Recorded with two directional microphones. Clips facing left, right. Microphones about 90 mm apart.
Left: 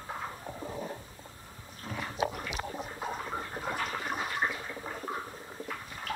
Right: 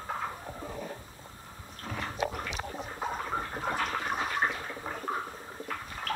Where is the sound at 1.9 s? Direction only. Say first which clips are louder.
Even; centre (ahead or behind).